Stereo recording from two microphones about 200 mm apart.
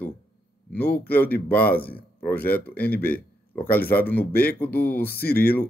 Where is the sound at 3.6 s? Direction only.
10° left (ahead or behind).